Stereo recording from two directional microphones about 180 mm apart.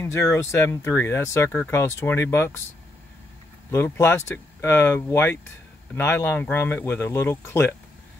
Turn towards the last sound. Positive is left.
turn(degrees=10)  # may be behind; listen again after turning